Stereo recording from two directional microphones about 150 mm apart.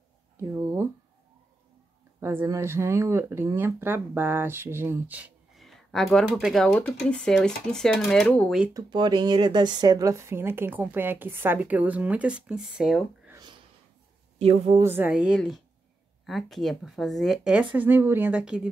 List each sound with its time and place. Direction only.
0.4 s speech: 20° right (ahead or behind)
2.1 s speech: 15° right (ahead or behind)
5.6 s speech: centre (ahead or behind)
8.7 s speech: 30° right (ahead or behind); by 13.3 s 5° right (ahead or behind)
14.4 s a woman's voice: 40° right (ahead or behind)
14.8 s speech: 15° right (ahead or behind)